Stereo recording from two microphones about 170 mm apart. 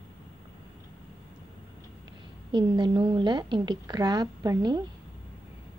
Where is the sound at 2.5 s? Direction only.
30° right (ahead or behind).